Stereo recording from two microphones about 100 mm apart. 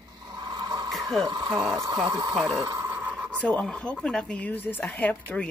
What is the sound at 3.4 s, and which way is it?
Speech, 10° left (ahead or behind).